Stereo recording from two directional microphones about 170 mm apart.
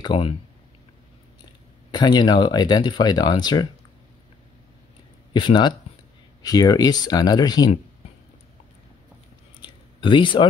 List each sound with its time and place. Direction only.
0.0 s speech: 30° left (ahead or behind)
1.9 s speech: 25° left (ahead or behind)
5.3 s speech: 25° left (ahead or behind)
9.6 s a sound: 25° left (ahead or behind)